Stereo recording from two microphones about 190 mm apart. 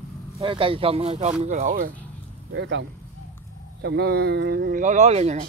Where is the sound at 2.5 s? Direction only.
70° right (ahead or behind); by 5.4 s 35° right (ahead or behind).